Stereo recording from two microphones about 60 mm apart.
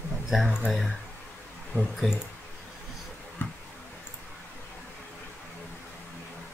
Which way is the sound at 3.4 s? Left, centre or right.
Left.